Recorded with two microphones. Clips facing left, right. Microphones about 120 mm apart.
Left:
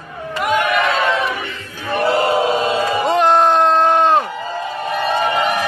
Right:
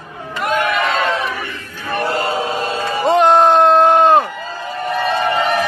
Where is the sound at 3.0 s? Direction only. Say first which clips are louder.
Right 4 dB; centre (ahead or behind).